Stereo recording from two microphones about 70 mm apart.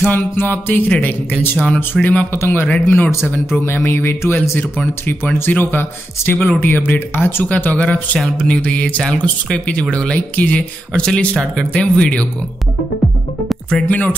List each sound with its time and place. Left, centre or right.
0.0 s speech: left
7.5 s speech: left
13.8 s speech: centre